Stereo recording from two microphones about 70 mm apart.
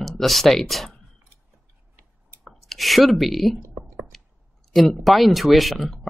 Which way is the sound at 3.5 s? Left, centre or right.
Right.